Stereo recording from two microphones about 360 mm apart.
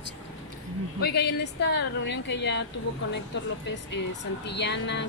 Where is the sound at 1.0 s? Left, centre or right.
Left.